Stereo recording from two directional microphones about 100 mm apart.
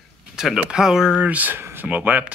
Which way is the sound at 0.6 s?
10° right (ahead or behind).